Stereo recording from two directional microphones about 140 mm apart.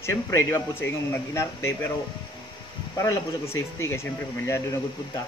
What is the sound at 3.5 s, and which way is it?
A man's voice, 20° left (ahead or behind).